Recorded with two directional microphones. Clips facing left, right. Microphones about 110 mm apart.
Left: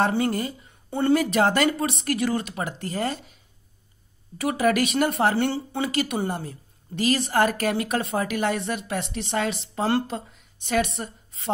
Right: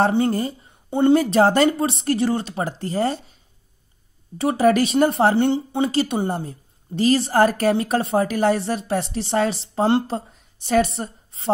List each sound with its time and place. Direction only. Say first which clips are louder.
0.1 s speech: right 4 dB; 30° right (ahead or behind)
0.8 s speech: right 6 dB; 20° right (ahead or behind)
1.1 s a woman's voice: right 3 dB; 35° right (ahead or behind)
4.4 s a woman's voice: right 5 dB; 30° right (ahead or behind)